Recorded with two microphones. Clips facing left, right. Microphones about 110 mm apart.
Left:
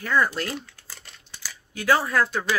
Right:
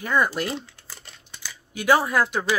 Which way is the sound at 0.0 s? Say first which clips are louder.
Right 1 dB; 15° right (ahead or behind).